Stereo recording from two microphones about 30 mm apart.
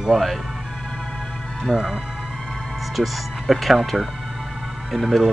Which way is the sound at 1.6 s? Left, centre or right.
Centre.